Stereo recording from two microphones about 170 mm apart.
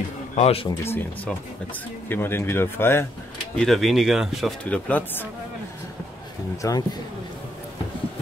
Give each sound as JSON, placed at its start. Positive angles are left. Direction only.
{"t": 0.4, "sound": "speech", "side_deg": 35}
{"t": 0.7, "sound": "speech", "side_deg": 15}
{"t": 3.5, "sound": "speech", "side_deg": 0}
{"t": 6.6, "sound": "speech", "side_deg": 20}